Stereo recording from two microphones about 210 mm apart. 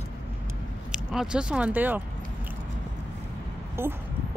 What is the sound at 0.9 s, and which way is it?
Speech, 5° right (ahead or behind).